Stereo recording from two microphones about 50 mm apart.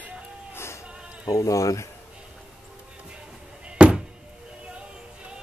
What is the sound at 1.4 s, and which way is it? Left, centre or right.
Speech, left.